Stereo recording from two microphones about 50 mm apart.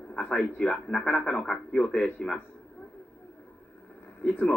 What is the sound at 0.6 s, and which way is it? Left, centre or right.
Speech, centre.